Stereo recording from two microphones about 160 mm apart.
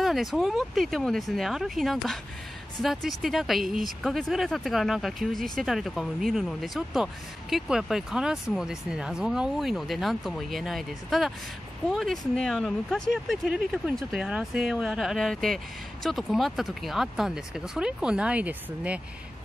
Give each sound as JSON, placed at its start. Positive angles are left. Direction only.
{"t": 0.0, "sound": "speech", "side_deg": 0}